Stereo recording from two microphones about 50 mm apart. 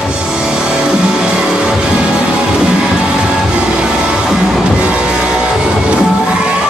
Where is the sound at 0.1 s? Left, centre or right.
Centre.